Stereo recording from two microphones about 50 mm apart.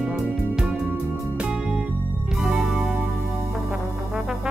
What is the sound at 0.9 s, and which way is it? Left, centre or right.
Music, right.